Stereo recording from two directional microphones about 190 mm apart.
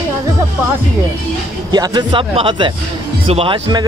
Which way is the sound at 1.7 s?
20° right (ahead or behind).